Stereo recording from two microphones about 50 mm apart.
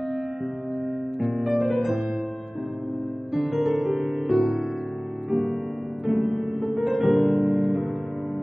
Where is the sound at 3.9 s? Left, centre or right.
Right.